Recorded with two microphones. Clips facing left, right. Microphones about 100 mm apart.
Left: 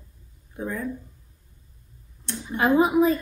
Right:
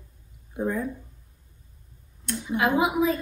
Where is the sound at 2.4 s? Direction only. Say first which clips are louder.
Left 3 dB; 40° left (ahead or behind).